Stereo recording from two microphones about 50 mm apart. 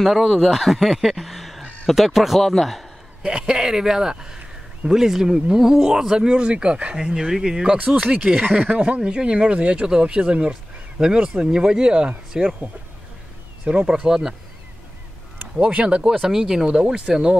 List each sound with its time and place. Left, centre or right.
0.0 s speech: centre
3.2 s speech: centre
7.7 s speech: right
13.7 s speech: centre
15.6 s speech: right
16.0 s speech: centre